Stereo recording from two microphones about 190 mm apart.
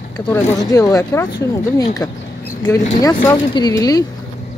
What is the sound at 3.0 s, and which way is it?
Speech, 20° left (ahead or behind).